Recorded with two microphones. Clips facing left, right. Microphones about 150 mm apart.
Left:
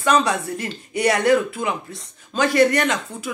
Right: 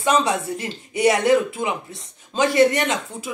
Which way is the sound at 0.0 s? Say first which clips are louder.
Left 1 dB; 25° right (ahead or behind).